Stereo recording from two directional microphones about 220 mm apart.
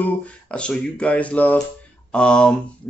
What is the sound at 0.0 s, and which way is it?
Speech, 5° left (ahead or behind).